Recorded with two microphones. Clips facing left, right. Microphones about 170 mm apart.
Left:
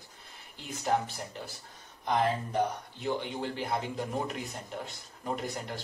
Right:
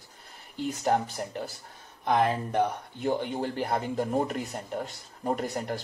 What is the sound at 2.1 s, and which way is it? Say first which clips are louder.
Speech: right 4 dB; 60° right (ahead or behind).